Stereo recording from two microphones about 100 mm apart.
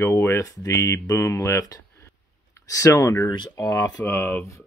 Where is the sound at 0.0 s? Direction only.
25° left (ahead or behind).